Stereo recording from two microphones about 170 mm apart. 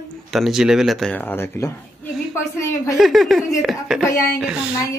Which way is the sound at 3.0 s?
Centre (ahead or behind).